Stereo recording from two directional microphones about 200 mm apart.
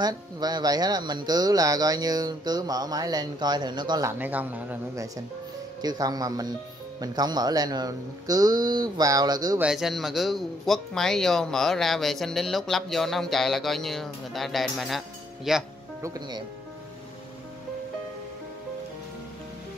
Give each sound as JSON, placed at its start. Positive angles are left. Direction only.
{"t": 0.0, "sound": "speech", "side_deg": -20}
{"t": 4.2, "sound": "speech", "side_deg": -10}
{"t": 9.6, "sound": "speech", "side_deg": 0}
{"t": 16.0, "sound": "speech", "side_deg": -20}